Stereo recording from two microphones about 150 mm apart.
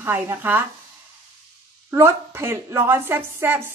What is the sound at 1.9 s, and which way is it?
Speech, 15° right (ahead or behind).